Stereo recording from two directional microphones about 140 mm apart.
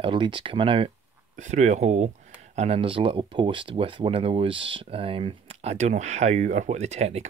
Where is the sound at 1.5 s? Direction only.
55° right (ahead or behind).